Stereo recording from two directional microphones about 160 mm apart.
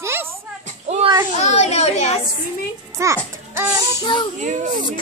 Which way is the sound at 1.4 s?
45° left (ahead or behind).